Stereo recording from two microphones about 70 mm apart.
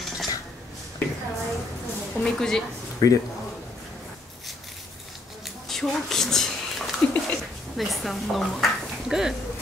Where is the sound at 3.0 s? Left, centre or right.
Left.